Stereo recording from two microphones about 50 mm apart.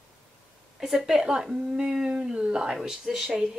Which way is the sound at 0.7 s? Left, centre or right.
Centre.